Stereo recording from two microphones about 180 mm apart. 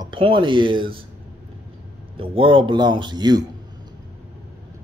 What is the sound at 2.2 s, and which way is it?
Speech, 30° right (ahead or behind).